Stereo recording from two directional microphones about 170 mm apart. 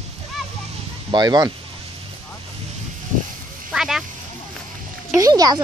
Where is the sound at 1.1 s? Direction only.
25° right (ahead or behind).